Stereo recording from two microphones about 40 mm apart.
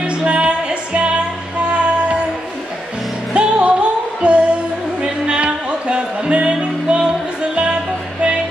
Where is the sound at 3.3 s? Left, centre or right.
Right.